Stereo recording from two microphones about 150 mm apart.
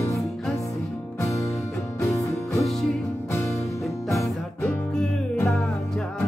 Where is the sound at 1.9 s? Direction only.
20° left (ahead or behind).